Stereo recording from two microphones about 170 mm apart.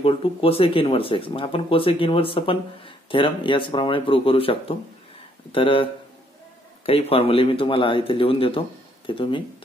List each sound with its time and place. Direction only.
0.0 s speech: 35° left (ahead or behind)
6.9 s speech: 35° left (ahead or behind)